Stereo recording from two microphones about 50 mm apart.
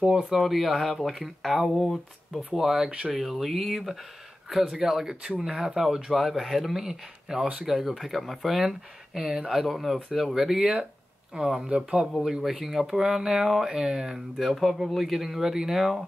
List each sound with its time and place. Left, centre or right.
0.0 s speech: centre
0.3 s speech: centre
7.6 s speech: centre
9.2 s speech: centre
9.5 s speech: centre